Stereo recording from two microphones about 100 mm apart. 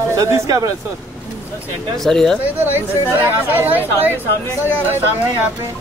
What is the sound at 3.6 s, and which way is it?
Speech, 20° right (ahead or behind).